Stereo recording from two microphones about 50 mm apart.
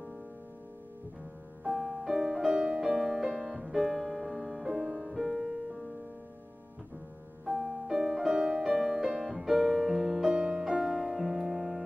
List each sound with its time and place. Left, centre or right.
1.7 s music: centre
2.5 s music: centre
2.8 s music: centre
7.4 s music: centre
8.4 s music: centre
8.6 s music: centre
10.3 s music: centre